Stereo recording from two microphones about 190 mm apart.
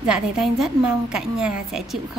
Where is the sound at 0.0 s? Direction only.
5° right (ahead or behind).